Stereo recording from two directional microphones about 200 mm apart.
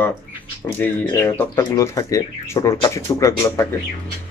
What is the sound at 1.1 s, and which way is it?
Speech, 20° left (ahead or behind).